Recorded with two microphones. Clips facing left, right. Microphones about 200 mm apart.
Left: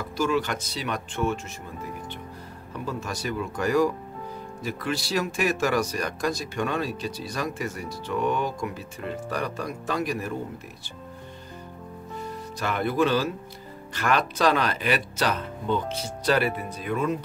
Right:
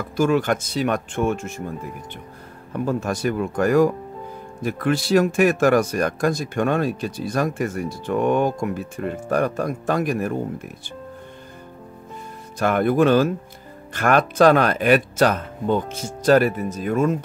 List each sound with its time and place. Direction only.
0.2 s speech: 50° right (ahead or behind)
2.7 s speech: 50° right (ahead or behind)
12.5 s speech: 50° right (ahead or behind)